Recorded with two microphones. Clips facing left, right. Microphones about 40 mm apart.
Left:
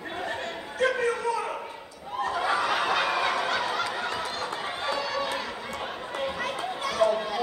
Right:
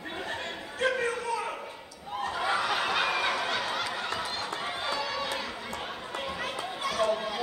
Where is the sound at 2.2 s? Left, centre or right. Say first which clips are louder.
Left 3 dB; centre.